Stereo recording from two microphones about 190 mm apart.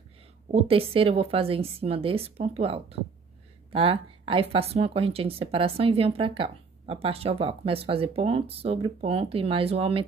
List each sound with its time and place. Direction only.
0.5 s speech: 30° right (ahead or behind)